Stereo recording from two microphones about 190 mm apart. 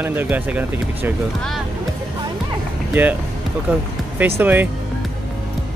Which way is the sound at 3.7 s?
10° right (ahead or behind).